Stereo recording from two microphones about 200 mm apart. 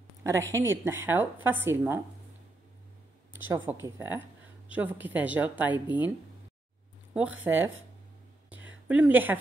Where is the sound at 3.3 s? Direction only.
10° right (ahead or behind).